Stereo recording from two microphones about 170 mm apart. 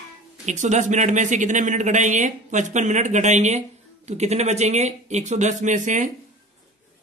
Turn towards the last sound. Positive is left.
turn(degrees=-45)  # may be behind; listen again after turning